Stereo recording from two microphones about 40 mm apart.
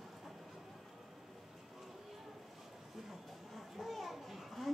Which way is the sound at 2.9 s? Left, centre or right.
Centre.